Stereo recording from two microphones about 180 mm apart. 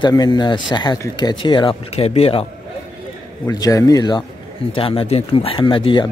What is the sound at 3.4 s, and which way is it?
Speech, 20° left (ahead or behind).